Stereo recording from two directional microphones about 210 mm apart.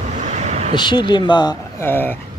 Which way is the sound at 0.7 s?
20° left (ahead or behind).